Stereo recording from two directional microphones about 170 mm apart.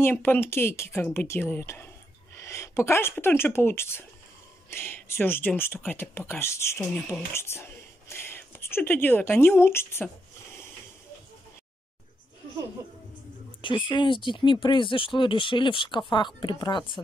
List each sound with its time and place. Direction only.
0.0 s speech: 10° left (ahead or behind)
13.6 s speech: 30° left (ahead or behind)